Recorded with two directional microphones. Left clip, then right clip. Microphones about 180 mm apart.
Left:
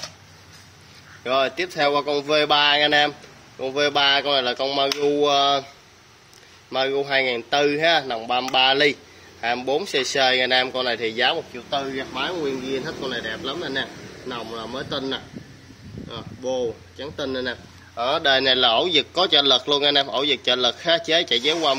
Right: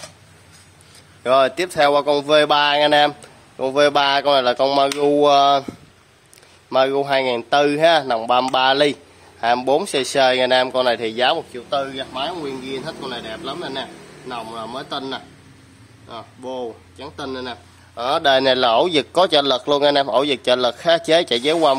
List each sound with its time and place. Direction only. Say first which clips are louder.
1.2 s a man's voice: right 6 dB; 30° right (ahead or behind)
5.0 s a sound: right 5 dB; 30° right (ahead or behind)
6.7 s a man's voice: right 5 dB; 30° right (ahead or behind)